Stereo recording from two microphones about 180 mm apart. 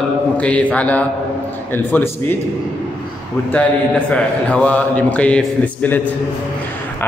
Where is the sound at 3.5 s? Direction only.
5° left (ahead or behind).